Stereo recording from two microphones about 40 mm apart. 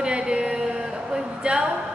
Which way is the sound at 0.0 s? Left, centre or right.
Right.